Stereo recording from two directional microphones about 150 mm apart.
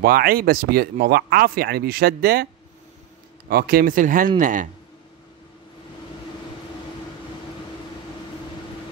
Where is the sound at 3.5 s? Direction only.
85° right; by 4.7 s 60° right (ahead or behind).